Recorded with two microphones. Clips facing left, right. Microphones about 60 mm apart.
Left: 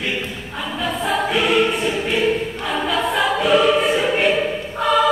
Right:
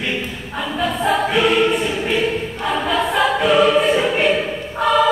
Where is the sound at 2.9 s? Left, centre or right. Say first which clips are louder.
Right 2 dB; centre.